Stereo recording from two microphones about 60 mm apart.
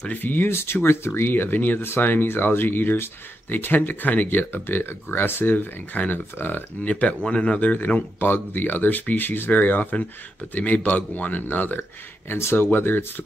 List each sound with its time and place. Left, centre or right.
0.1 s speech: left
0.5 s speech: left
6.8 s speech: left